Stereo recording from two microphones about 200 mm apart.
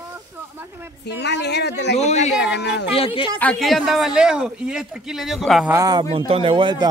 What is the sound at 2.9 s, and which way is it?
Speech, 25° left (ahead or behind).